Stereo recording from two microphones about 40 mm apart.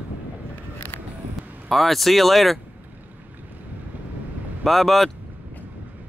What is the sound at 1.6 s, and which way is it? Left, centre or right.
Speech, centre.